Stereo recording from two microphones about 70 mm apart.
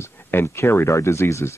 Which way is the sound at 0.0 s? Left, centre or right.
Left.